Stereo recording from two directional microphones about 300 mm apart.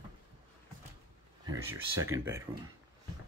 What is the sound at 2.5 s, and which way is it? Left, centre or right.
Speech, centre.